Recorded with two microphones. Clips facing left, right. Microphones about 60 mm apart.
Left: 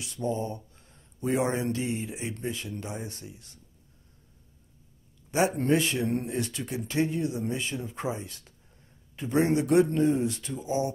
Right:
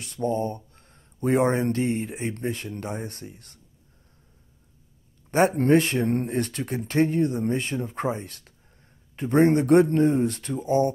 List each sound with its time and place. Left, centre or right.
0.0 s speech: right
5.6 s speech: right